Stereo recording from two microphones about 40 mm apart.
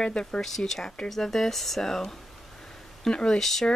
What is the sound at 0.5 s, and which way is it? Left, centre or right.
Speech, centre.